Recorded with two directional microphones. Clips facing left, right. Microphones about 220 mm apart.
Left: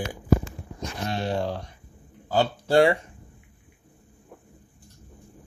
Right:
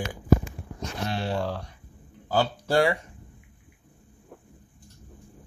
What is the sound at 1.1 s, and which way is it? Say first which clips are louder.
Speech: left 2 dB; 20° left (ahead or behind).